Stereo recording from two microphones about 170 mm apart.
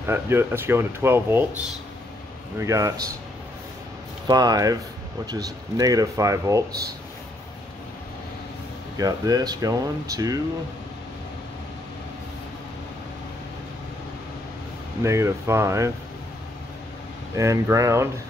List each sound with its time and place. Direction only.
0.0 s speech: 15° right (ahead or behind)
2.6 s speech: 20° right (ahead or behind)
4.3 s speech: 25° right (ahead or behind)
8.9 s speech: 20° right (ahead or behind)
15.0 s speech: 15° right (ahead or behind)
17.4 s speech: 20° right (ahead or behind)